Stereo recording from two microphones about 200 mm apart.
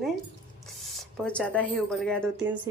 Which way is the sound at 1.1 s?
5° left (ahead or behind).